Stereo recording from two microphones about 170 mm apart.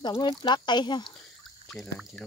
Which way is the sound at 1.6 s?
5° left (ahead or behind).